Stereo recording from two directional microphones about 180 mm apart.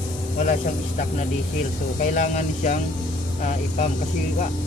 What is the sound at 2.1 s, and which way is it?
Speech, 45° left (ahead or behind).